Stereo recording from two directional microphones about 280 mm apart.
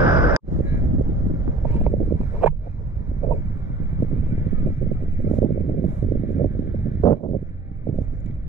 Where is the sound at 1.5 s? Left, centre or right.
Centre.